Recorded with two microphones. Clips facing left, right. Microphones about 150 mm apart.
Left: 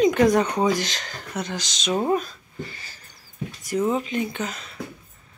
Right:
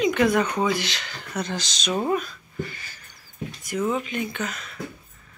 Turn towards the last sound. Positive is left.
turn(degrees=30)  # may be behind; listen again after turning